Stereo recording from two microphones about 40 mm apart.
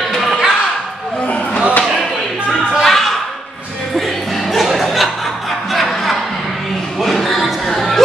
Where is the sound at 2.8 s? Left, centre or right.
Centre.